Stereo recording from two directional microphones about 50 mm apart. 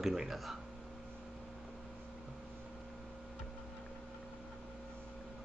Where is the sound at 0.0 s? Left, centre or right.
Centre.